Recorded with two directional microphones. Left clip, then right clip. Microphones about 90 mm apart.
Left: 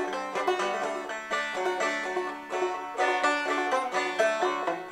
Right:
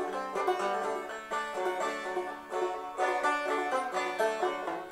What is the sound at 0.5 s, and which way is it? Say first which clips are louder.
Music: left 2 dB; 20° left (ahead or behind).